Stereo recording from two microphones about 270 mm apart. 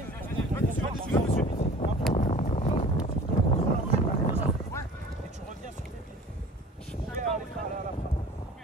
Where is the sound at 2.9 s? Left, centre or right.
Centre.